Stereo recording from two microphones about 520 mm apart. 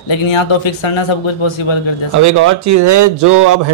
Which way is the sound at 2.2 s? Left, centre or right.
Right.